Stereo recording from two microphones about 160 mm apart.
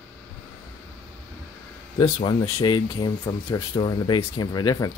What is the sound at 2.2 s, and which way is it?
Speech, 30° left (ahead or behind).